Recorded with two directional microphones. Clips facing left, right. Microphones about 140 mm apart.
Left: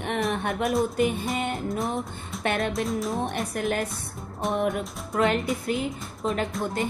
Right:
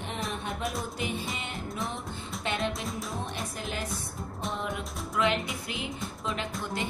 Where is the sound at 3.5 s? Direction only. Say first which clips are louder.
Left 8 dB; 60° left (ahead or behind).